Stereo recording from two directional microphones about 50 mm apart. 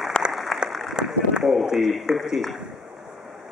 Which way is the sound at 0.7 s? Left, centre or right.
Centre.